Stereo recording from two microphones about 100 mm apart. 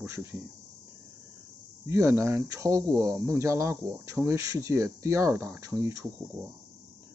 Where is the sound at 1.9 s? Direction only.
30° right (ahead or behind).